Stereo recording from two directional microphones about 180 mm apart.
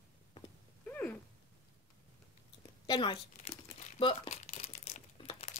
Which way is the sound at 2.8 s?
25° left (ahead or behind).